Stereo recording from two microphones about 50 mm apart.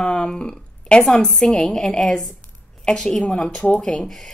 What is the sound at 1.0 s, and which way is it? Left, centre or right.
Speech, centre.